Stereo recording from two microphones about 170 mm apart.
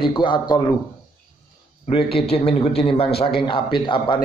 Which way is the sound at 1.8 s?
35° left (ahead or behind).